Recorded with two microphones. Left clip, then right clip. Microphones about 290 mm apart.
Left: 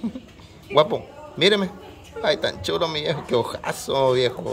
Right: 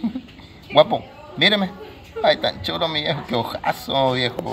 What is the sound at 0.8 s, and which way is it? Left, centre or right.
A man's voice, centre.